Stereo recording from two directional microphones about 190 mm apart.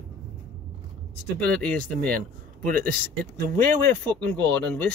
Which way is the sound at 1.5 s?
5° left (ahead or behind).